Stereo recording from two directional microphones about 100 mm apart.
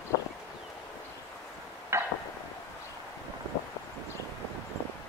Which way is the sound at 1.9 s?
25° right (ahead or behind).